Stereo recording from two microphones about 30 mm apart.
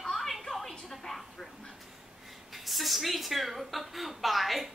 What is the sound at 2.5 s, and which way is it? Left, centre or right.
A woman's voice, centre.